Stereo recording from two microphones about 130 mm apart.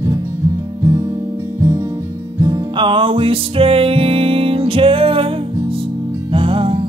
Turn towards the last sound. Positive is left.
turn(degrees=-45)  # may be behind; listen again after turning